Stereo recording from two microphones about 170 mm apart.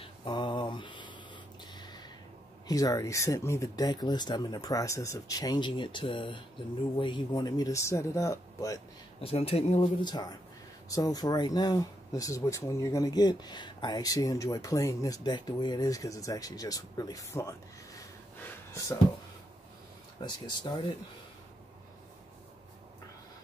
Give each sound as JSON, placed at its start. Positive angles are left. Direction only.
{"t": 0.0, "sound": "mantra", "side_deg": 30}
{"t": 1.6, "sound": "a sound", "side_deg": 25}
{"t": 2.7, "sound": "speech", "side_deg": 20}
{"t": 9.2, "sound": "speech", "side_deg": 35}
{"t": 10.0, "sound": "speech", "side_deg": 25}
{"t": 20.2, "sound": "speech", "side_deg": 25}